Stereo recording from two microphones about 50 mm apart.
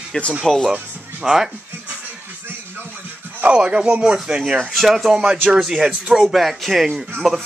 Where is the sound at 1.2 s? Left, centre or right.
Centre.